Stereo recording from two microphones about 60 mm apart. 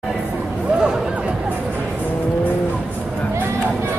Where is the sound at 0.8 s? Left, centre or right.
Centre.